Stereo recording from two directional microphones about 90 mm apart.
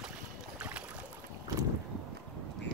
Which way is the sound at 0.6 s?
15° right (ahead or behind).